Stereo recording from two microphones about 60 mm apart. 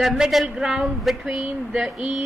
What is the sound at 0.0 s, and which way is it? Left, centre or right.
Speech, centre.